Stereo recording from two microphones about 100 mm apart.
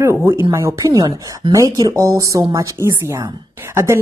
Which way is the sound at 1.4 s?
55° right (ahead or behind).